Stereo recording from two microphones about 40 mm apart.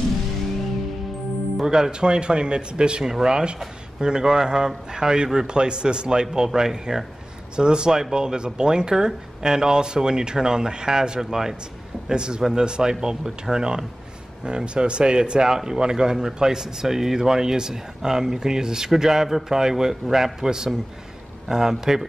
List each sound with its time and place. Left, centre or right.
1.6 s a man's voice: centre